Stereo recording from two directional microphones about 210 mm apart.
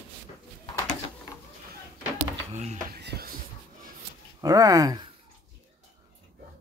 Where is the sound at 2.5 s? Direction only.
30° right (ahead or behind).